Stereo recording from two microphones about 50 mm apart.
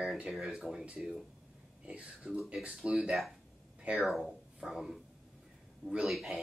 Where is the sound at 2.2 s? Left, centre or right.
Centre.